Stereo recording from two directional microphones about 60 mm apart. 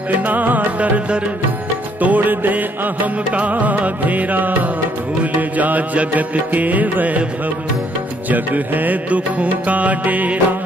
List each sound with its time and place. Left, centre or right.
0.2 s music: right
8.3 s music: right